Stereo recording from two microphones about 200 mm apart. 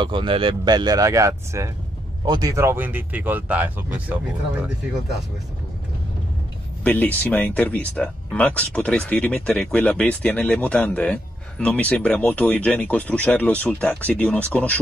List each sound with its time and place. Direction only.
0.0 s speech: 25° right (ahead or behind); by 4.0 s 10° right (ahead or behind)
6.8 s speech: 10° left (ahead or behind)